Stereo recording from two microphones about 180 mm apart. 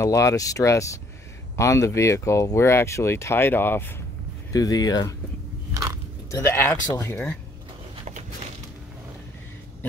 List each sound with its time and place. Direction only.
0.0 s speech: 20° left (ahead or behind)
5.7 s biting: 15° right (ahead or behind)
6.3 s speech: 15° left (ahead or behind)